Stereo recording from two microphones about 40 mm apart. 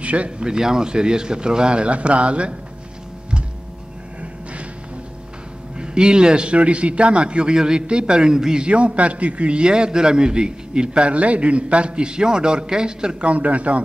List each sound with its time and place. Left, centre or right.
0.0 s a sound: right
0.4 s a man's voice: centre
5.8 s a man's voice: right
8.6 s a man's voice: right
13.3 s speech: right